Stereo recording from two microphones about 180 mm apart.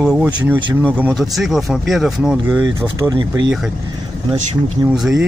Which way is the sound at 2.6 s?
15° right (ahead or behind).